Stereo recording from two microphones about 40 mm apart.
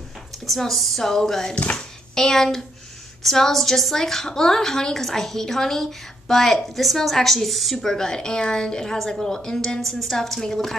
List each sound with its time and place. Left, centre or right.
0.5 s a woman's voice: centre
1.5 s speech: left
2.1 s a woman's voice: centre
7.7 s a woman's voice: centre